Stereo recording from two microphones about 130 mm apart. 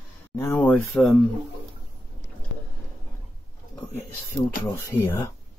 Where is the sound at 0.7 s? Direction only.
5° left (ahead or behind).